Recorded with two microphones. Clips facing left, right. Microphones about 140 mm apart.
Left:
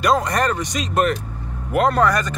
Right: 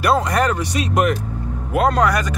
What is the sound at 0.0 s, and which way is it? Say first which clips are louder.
Speech: right 1 dB; 10° right (ahead or behind).